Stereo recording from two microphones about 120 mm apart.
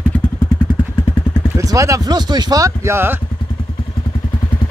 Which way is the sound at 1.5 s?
25° right (ahead or behind).